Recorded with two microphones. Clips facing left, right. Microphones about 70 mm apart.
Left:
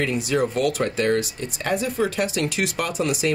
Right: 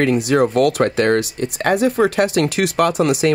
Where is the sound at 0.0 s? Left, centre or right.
Right.